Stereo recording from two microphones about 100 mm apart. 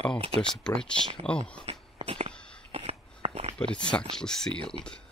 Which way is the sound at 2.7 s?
90° right.